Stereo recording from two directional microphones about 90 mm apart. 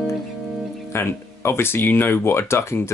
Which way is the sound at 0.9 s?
25° left (ahead or behind).